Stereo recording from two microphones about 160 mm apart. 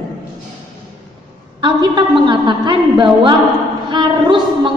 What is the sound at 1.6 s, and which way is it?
A woman's voice, 30° right (ahead or behind).